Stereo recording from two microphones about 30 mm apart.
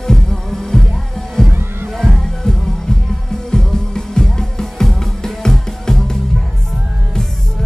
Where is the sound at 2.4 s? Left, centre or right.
Left.